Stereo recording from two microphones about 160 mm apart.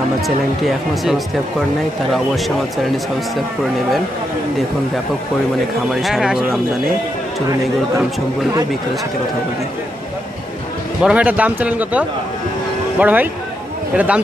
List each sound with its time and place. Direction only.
0.7 s speech: centre (ahead or behind)
5.9 s speech: centre (ahead or behind)
11.0 s speech: 5° right (ahead or behind)